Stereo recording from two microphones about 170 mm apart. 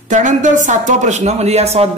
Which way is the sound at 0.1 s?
45° right (ahead or behind).